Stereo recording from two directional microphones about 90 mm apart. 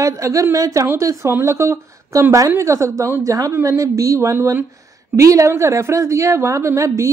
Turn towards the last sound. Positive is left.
turn(degrees=-35)  # may be behind; listen again after turning